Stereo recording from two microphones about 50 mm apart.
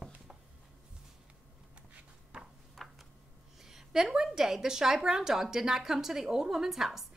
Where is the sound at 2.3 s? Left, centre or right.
Right.